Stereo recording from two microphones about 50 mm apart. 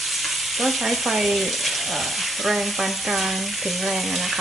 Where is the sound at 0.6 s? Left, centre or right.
Centre.